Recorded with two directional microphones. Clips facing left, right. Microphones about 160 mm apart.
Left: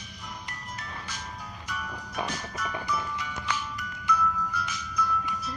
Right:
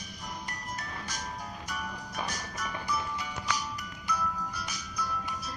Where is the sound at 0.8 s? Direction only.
40° right (ahead or behind).